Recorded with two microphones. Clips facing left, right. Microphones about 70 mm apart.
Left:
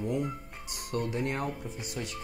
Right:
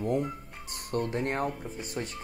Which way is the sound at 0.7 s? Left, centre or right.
Right.